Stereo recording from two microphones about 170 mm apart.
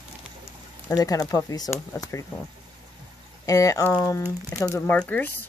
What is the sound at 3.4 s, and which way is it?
Speech, 20° left (ahead or behind).